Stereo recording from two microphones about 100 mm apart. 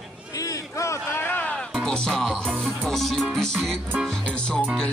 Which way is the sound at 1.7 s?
5° left (ahead or behind).